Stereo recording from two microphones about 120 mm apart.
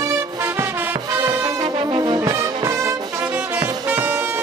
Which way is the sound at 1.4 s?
40° right (ahead or behind).